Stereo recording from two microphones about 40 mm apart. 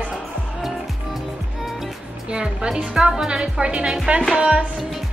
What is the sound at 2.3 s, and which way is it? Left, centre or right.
A woman's voice, right.